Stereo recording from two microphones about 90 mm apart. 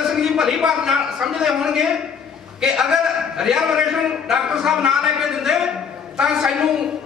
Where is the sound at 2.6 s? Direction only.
5° right (ahead or behind).